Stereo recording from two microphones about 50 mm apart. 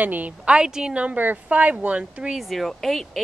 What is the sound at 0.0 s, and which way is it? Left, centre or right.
Speech, right.